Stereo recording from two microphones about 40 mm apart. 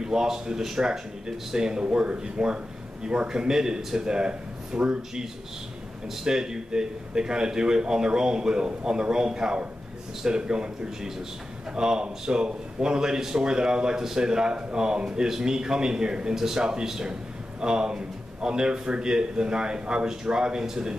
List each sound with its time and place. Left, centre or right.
0.0 s a man's voice: centre
6.0 s a man's voice: centre